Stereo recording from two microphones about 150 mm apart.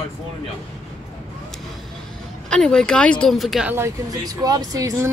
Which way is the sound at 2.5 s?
5° left (ahead or behind).